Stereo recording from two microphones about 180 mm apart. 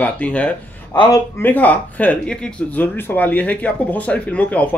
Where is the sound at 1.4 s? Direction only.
10° left (ahead or behind).